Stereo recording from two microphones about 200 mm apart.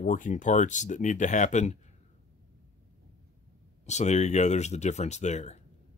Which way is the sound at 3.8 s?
35° left (ahead or behind).